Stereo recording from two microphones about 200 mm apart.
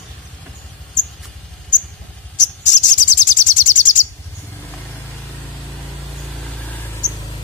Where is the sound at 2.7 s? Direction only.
40° left (ahead or behind).